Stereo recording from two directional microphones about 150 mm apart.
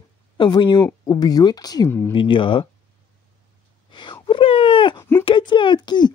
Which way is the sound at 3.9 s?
30° left (ahead or behind).